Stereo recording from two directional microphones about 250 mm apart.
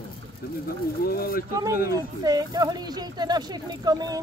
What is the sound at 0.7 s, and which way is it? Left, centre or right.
Speech, left.